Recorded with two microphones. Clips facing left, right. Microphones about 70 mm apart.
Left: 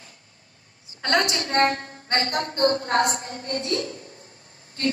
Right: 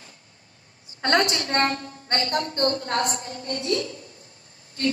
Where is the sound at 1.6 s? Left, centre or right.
Left.